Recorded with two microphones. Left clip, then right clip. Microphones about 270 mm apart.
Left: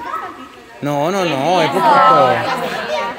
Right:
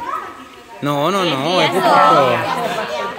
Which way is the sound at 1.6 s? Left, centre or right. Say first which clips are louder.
Even; right.